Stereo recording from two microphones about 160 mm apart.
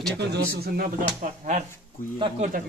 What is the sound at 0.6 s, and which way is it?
Speech, 70° right (ahead or behind).